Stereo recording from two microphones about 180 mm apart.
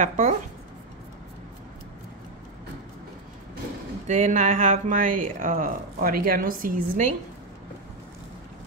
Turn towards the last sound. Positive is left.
turn(degrees=-45)  # may be behind; listen again after turning